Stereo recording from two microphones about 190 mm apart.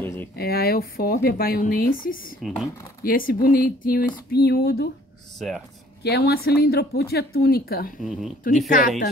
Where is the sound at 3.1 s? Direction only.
50° left (ahead or behind).